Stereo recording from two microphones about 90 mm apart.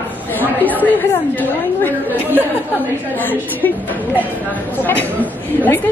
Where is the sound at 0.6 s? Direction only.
20° left (ahead or behind).